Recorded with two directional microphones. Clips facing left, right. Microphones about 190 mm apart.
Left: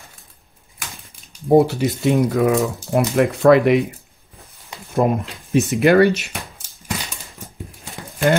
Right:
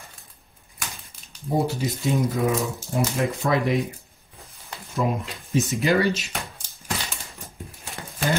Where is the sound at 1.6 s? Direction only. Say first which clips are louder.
Left 8 dB; 60° left (ahead or behind).